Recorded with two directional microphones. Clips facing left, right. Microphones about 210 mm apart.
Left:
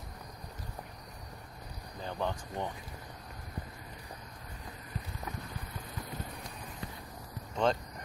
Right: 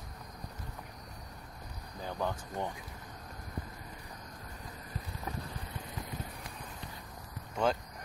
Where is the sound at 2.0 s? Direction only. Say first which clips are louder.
Even; 10° right (ahead or behind).